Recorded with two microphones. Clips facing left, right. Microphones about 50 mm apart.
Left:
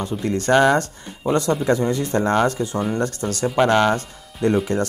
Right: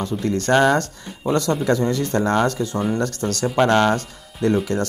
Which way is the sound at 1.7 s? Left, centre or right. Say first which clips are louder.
Right 1 dB; left.